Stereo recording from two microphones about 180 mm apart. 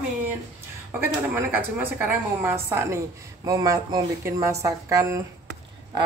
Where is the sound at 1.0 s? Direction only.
10° right (ahead or behind).